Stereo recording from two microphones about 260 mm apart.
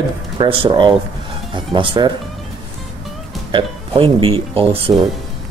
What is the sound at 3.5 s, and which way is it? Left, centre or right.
Speech, centre.